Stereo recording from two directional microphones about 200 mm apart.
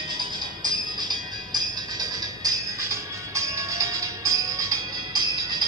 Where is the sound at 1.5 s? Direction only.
20° right (ahead or behind).